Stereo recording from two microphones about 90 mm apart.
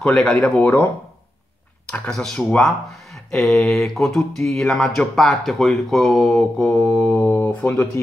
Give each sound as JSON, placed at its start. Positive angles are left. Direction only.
{"t": 0.0, "sound": "speech", "side_deg": 10}
{"t": 0.6, "sound": "speech", "side_deg": 20}
{"t": 1.9, "sound": "speech", "side_deg": 10}
{"t": 6.6, "sound": "speech", "side_deg": 15}